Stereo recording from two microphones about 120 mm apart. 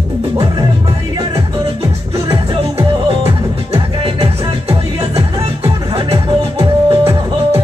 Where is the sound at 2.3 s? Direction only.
55° right (ahead or behind).